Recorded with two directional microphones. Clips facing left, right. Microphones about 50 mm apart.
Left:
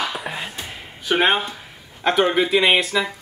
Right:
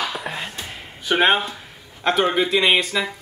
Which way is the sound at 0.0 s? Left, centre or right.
Centre.